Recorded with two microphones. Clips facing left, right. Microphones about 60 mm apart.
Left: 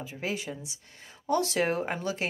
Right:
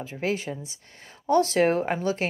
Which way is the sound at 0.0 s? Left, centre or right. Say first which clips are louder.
Right 5 dB; right.